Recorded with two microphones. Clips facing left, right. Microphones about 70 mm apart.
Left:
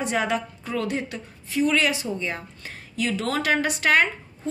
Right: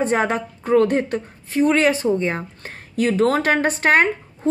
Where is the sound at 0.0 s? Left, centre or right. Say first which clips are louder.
Right 5 dB; right.